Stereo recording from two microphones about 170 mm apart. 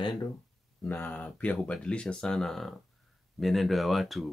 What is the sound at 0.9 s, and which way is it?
Speech, 10° left (ahead or behind).